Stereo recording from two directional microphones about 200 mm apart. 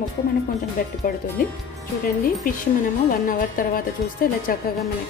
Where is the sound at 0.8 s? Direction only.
45° left (ahead or behind).